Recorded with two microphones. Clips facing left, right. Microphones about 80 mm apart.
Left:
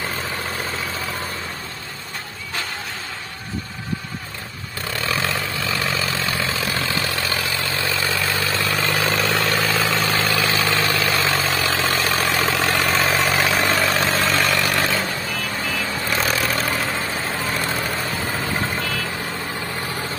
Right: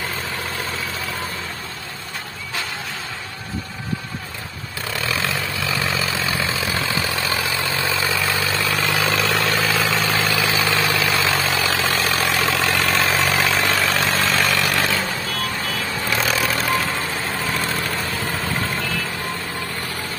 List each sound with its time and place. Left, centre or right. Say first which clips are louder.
4.9 s vehicle: even; centre
5.8 s vehicle: right 1 dB; centre
6.4 s vehicle: right 1 dB; centre
8.2 s vehicle: right 1 dB; centre